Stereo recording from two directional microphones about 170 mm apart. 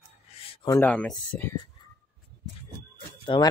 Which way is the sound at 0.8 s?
5° left (ahead or behind).